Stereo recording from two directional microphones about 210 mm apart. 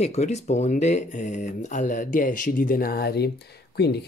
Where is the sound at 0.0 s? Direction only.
30° left (ahead or behind).